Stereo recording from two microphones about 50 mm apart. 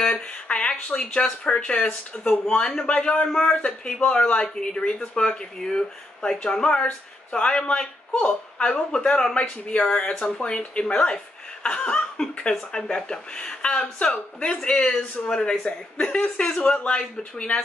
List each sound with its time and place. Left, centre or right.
0.0 s a man's voice: left